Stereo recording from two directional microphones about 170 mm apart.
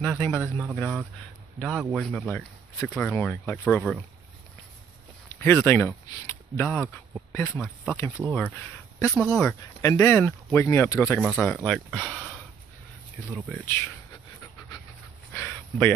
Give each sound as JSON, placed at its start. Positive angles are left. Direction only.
{"t": 0.0, "sound": "speech", "side_deg": 10}
{"t": 5.4, "sound": "speech", "side_deg": 10}
{"t": 9.8, "sound": "speech", "side_deg": 15}
{"t": 11.2, "sound": "speech", "side_deg": 0}
{"t": 15.3, "sound": "a sound", "side_deg": 10}